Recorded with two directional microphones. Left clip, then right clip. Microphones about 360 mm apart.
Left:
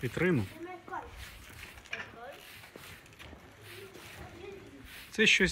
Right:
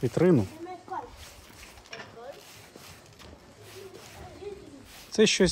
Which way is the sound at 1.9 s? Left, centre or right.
Right.